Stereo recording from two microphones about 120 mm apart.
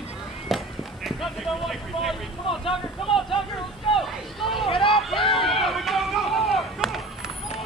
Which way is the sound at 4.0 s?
Centre (ahead or behind).